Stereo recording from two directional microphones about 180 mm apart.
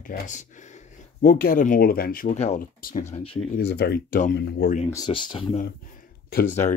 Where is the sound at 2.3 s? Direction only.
35° left (ahead or behind).